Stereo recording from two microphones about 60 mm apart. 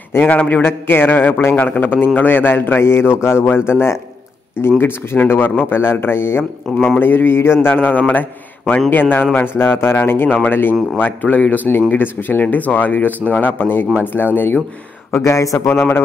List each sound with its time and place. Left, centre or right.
0.1 s speech: left
0.7 s a man's voice: left
15.1 s speech: left
15.7 s speech: left